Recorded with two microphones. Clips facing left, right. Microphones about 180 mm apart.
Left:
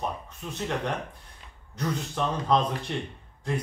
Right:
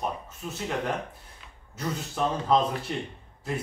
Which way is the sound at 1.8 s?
5° right (ahead or behind).